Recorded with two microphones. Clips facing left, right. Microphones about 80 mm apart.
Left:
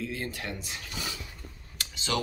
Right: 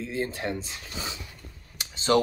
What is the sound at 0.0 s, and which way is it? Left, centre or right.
Speech, right.